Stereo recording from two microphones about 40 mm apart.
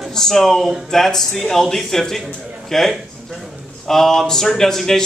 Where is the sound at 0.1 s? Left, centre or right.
Centre.